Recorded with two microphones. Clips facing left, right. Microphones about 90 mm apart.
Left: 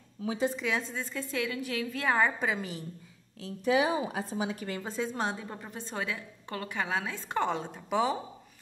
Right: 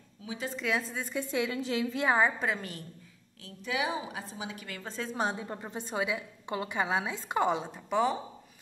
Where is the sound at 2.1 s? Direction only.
Centre (ahead or behind).